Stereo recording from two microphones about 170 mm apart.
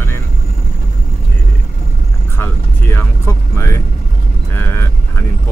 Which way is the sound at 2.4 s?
15° left (ahead or behind).